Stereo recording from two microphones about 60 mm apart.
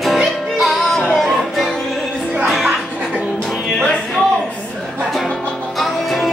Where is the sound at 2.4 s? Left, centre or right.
Centre.